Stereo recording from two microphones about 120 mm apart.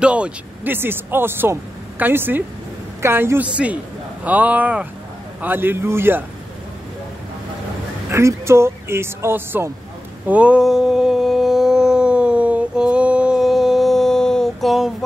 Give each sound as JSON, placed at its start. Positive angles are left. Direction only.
{"t": 0.0, "sound": "speech", "side_deg": -10}
{"t": 8.1, "sound": "speech", "side_deg": -25}
{"t": 10.2, "sound": "a sound", "side_deg": -10}